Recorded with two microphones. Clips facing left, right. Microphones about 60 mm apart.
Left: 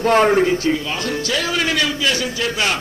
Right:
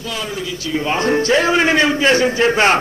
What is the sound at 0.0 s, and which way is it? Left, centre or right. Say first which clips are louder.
Speech: left 11 dB; left.